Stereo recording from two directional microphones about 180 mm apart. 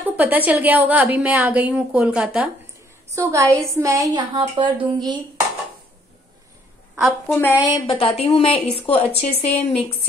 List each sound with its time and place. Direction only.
0.0 s a woman's voice: 10° right (ahead or behind)
3.2 s a woman's voice: 15° right (ahead or behind)
7.2 s a woman's voice: 10° left (ahead or behind)
7.7 s a woman's voice: 30° left (ahead or behind)